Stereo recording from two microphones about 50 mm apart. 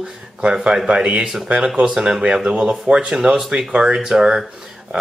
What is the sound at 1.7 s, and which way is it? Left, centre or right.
Speech, centre.